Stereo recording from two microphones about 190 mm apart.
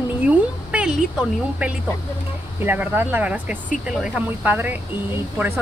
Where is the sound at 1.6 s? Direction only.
5° right (ahead or behind).